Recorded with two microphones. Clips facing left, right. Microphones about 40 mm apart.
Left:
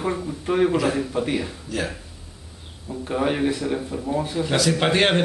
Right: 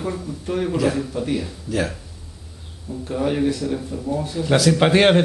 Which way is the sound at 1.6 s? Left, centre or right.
Centre.